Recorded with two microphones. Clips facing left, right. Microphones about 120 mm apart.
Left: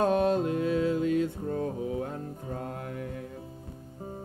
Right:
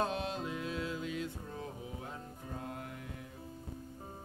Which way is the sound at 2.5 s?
55° left (ahead or behind).